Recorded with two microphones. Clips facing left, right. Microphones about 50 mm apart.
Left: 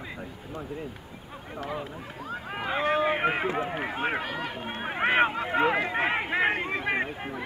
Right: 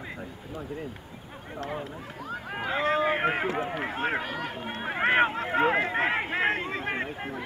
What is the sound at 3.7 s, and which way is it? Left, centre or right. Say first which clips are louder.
Speech: even; centre.